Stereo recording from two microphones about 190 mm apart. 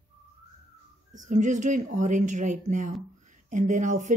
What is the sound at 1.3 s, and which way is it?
Speech, 40° right (ahead or behind).